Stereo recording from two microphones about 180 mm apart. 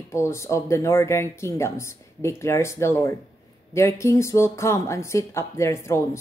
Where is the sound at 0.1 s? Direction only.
15° left (ahead or behind).